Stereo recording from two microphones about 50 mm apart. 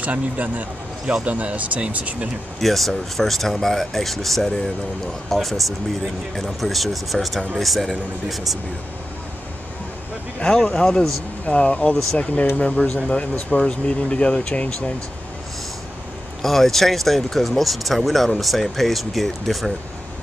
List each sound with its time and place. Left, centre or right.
0.0 s speech: right
2.6 s speech: centre
10.4 s a man's voice: centre
11.4 s speech: left
16.4 s speech: centre